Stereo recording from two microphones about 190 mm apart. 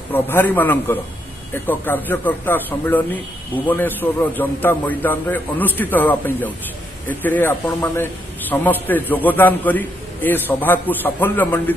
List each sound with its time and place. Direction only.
0.1 s a man's voice: 10° left (ahead or behind)